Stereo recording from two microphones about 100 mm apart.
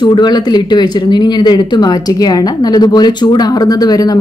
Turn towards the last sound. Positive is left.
turn(degrees=40)  # may be behind; listen again after turning